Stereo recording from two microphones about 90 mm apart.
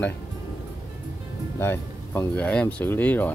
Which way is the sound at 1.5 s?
30° left (ahead or behind).